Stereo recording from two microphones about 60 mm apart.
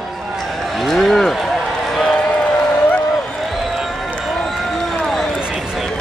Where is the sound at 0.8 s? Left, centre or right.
Centre.